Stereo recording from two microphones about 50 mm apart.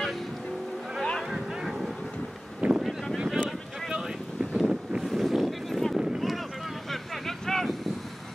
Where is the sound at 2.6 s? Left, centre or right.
Right.